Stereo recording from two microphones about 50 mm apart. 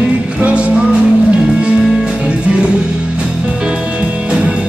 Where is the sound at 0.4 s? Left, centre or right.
Right.